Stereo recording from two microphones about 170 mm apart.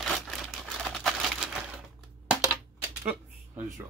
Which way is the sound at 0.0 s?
Centre (ahead or behind).